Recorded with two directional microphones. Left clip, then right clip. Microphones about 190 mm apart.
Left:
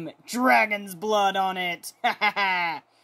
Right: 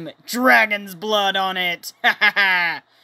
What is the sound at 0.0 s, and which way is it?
Speech, 5° right (ahead or behind).